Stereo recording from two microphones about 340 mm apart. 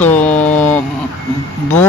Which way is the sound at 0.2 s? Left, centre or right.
Left.